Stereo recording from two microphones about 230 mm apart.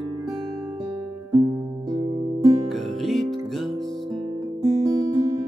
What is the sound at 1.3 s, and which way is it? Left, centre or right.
Music, centre.